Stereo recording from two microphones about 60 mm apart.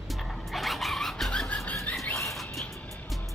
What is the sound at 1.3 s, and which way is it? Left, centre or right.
Bird, centre.